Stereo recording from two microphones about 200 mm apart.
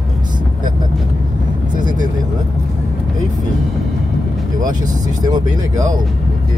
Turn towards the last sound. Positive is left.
turn(degrees=-20)  # may be behind; listen again after turning